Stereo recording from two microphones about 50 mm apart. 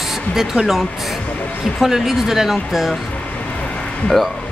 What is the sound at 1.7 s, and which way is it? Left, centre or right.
Speech, centre.